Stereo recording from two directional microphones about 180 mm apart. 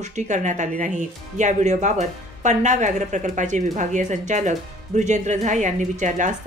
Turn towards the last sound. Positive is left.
turn(degrees=-45)  # may be behind; listen again after turning